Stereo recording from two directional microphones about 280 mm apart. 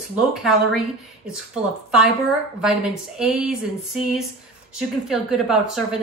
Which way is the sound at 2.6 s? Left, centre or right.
Centre.